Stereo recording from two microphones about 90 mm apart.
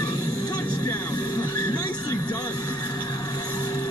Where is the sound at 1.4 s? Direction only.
25° left (ahead or behind).